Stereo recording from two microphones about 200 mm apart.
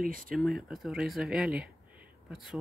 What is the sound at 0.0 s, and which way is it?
Speech, 45° right (ahead or behind).